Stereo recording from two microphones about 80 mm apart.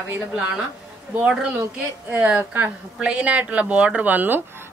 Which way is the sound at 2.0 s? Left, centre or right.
Centre.